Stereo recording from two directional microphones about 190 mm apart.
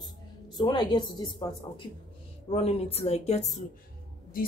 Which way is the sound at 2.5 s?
30° left (ahead or behind).